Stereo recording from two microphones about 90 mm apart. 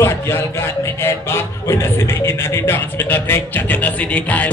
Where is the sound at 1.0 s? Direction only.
30° left (ahead or behind).